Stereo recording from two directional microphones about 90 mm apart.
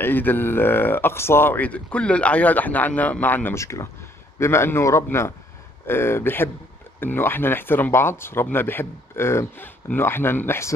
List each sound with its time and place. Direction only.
0.0 s speech: 20° left (ahead or behind)
3.5 s a man's voice: 35° left (ahead or behind)